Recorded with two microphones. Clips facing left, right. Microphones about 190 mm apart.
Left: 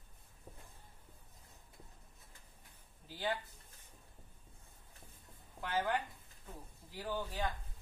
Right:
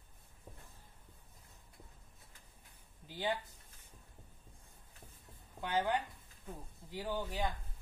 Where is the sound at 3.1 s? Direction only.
15° right (ahead or behind).